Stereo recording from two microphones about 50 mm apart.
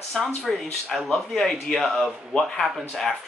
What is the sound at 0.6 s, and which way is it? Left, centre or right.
Speech, centre.